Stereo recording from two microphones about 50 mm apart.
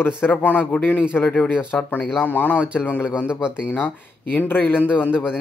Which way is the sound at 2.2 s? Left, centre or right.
Left.